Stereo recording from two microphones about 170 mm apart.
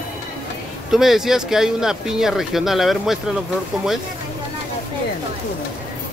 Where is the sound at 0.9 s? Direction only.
Centre (ahead or behind).